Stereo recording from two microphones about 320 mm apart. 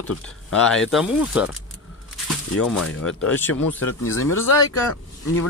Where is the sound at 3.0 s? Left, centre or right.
Left.